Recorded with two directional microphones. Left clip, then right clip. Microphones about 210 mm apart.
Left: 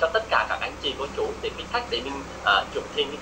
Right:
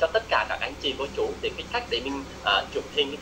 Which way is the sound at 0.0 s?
10° right (ahead or behind).